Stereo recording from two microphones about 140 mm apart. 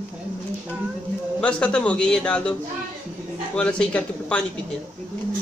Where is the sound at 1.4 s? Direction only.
5° left (ahead or behind).